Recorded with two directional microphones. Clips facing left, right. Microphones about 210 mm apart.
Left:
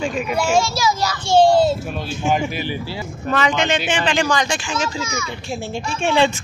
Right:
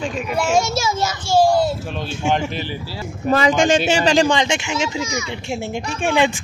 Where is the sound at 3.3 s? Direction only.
35° right (ahead or behind).